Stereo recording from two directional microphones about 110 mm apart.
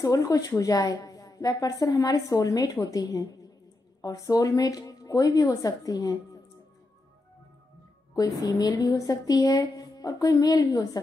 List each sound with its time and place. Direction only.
0.0 s a woman's voice: 30° left (ahead or behind)
8.1 s a woman's voice: 35° left (ahead or behind)